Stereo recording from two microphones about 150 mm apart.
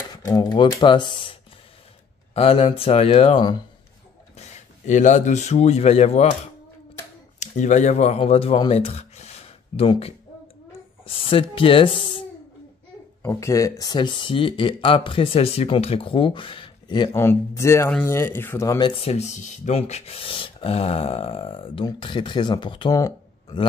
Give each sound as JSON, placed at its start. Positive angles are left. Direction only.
{"t": 0.1, "sound": "speech", "side_deg": 25}
{"t": 2.3, "sound": "speech", "side_deg": 40}
{"t": 3.3, "sound": "speech", "side_deg": 30}
{"t": 4.4, "sound": "speech", "side_deg": 55}
{"t": 7.3, "sound": "a child's voice", "side_deg": 50}
{"t": 13.2, "sound": "speech", "side_deg": 20}
{"t": 17.1, "sound": "speech", "side_deg": 15}